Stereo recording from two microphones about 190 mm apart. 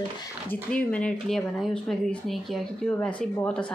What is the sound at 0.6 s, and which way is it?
Speech, 5° left (ahead or behind).